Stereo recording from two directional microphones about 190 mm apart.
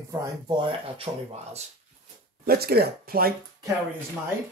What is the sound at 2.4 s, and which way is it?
Speech, 55° right (ahead or behind).